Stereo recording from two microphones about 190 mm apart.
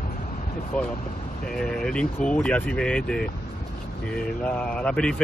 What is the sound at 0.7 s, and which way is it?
A man's voice, 5° left (ahead or behind).